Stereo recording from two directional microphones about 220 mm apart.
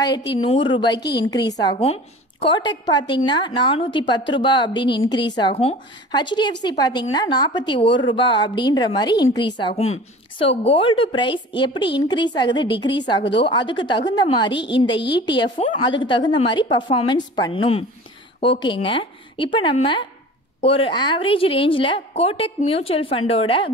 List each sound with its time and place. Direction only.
0.3 s a woman's voice: 25° left (ahead or behind)